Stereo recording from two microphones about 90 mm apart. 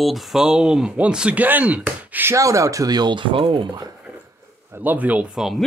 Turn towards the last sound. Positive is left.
turn(degrees=-15)  # may be behind; listen again after turning